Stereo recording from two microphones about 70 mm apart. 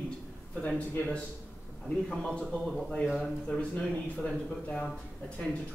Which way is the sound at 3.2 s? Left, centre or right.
Centre.